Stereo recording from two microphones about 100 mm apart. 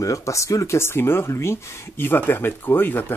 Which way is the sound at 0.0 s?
30° left (ahead or behind).